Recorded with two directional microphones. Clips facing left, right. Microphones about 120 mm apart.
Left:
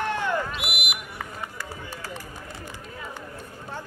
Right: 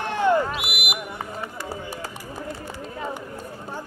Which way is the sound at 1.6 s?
20° right (ahead or behind).